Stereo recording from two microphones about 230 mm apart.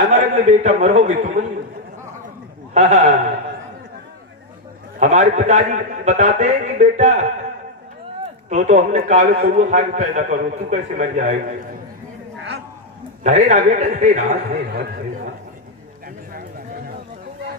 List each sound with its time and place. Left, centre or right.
0.1 s a man's voice: right
2.7 s a man's voice: right
4.9 s a man's voice: right
8.5 s a man's voice: right
13.2 s a man's voice: right
14.6 s speech: right